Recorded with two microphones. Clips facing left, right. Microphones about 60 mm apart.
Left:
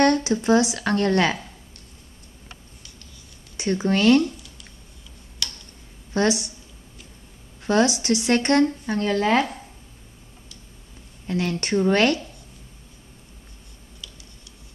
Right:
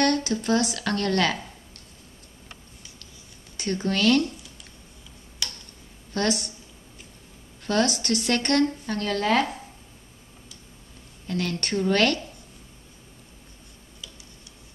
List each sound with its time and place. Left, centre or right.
0.0 s speech: left
3.5 s speech: centre
5.4 s tick-tock: centre
6.1 s speech: centre
7.6 s speech: centre
11.2 s speech: centre